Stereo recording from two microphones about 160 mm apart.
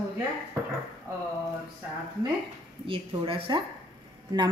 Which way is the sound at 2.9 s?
35° right (ahead or behind).